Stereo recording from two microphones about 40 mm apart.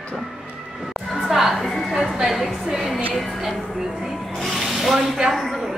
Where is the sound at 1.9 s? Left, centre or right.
Centre.